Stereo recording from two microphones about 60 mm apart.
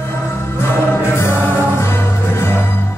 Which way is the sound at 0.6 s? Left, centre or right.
Left.